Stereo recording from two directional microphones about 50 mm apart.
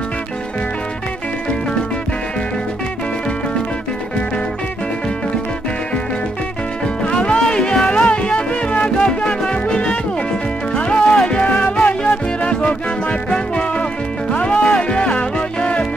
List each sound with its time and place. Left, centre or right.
7.1 s music: centre
8.1 s music: left